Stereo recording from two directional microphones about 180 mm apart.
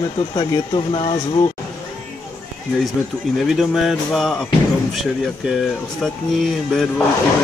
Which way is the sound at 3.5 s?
Centre (ahead or behind).